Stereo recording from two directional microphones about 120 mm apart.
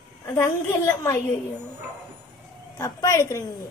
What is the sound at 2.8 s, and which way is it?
Speech, 30° left (ahead or behind).